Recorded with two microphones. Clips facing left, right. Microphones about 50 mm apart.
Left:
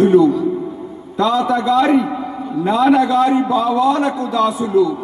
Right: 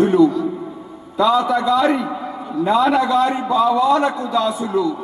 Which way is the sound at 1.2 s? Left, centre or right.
Centre.